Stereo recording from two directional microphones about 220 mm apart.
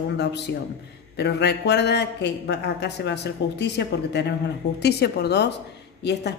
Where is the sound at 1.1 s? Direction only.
50° left (ahead or behind).